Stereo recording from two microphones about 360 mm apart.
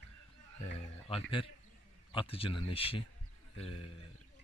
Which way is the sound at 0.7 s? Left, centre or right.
Centre.